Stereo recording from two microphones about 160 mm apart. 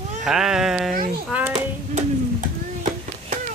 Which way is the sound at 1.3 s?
10° right (ahead or behind).